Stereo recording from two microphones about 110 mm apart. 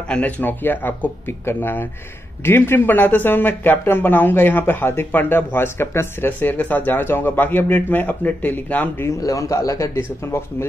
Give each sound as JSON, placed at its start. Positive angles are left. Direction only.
{"t": 0.1, "sound": "speech", "side_deg": 15}
{"t": 9.2, "sound": "a man's voice", "side_deg": 30}